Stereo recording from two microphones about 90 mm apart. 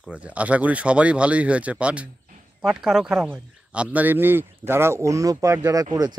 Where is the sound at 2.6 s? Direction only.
5° right (ahead or behind).